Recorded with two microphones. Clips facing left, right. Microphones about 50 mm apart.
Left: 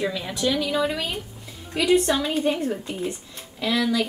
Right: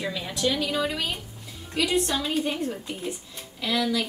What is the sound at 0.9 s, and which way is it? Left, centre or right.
A woman's voice, centre.